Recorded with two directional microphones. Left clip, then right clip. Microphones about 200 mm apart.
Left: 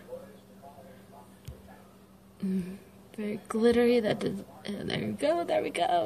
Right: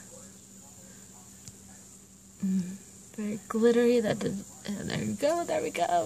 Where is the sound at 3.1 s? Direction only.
45° right (ahead or behind).